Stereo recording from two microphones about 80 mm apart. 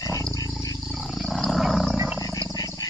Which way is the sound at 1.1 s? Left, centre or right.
Centre.